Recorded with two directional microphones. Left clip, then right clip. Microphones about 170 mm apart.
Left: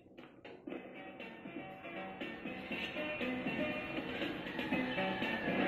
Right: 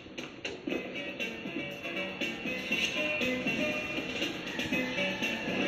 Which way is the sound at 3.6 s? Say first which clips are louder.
Right 6 dB; 15° right (ahead or behind).